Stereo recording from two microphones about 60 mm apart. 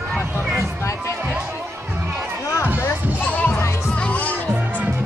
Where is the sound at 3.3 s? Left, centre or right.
Left.